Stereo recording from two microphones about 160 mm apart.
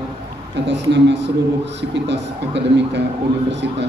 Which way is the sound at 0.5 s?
90° right.